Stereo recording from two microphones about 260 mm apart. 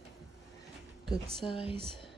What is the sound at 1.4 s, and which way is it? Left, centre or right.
Speech, centre.